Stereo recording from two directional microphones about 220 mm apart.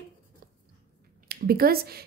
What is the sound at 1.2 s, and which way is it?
Speech, 45° right (ahead or behind).